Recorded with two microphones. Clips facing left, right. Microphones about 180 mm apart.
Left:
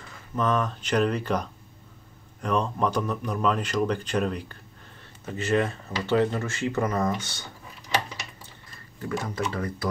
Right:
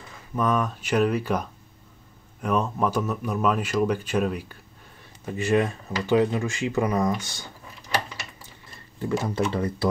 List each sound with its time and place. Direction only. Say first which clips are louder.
0.4 s speech: right 1 dB; 10° right (ahead or behind)
9.0 s speech: right 4 dB; 25° right (ahead or behind)